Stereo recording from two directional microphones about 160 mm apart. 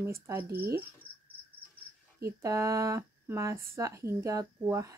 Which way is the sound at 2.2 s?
20° right (ahead or behind).